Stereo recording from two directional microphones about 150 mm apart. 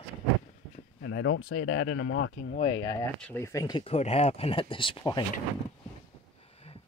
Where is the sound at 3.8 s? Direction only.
40° left (ahead or behind).